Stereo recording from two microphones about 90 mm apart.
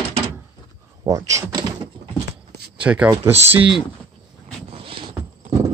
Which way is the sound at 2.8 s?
15° right (ahead or behind).